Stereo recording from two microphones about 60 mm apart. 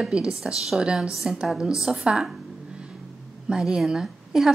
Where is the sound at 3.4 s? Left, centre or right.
Centre.